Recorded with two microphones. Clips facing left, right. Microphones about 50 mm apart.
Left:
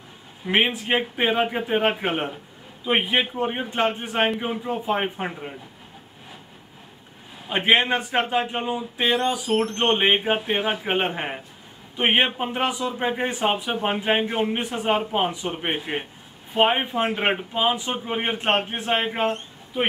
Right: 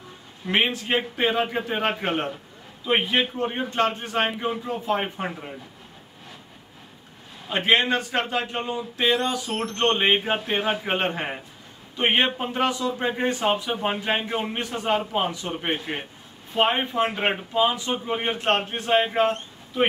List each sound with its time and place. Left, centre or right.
0.5 s a man's voice: centre
7.4 s a man's voice: centre